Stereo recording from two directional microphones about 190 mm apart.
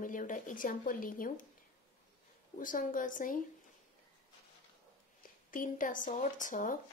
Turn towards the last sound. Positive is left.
turn(degrees=45)  # may be behind; listen again after turning